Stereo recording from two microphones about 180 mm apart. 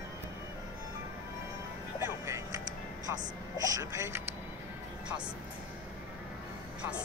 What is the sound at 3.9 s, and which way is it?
Speech, 15° right (ahead or behind).